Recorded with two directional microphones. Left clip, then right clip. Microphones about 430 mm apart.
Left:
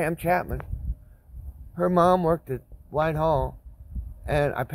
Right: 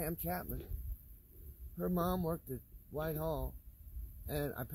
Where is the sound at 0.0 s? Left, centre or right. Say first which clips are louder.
Left 17 dB; left.